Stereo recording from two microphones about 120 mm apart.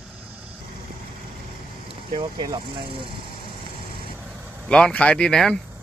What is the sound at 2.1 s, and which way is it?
Speech, 40° right (ahead or behind).